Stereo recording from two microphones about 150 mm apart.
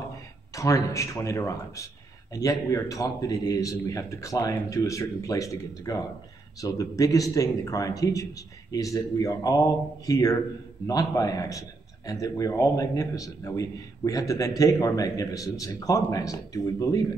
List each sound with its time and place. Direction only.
0.6 s a man's voice: 20° left (ahead or behind)